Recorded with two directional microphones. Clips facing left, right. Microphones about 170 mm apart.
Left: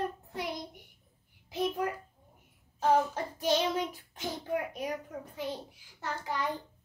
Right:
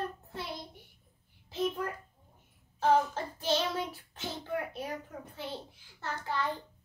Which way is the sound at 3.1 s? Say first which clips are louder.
Left 2 dB; 15° left (ahead or behind).